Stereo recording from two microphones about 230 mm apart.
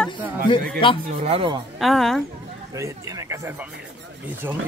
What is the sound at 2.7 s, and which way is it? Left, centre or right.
Speech, centre.